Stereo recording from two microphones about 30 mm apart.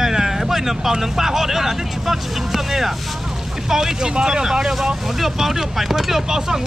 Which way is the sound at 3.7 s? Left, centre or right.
Right.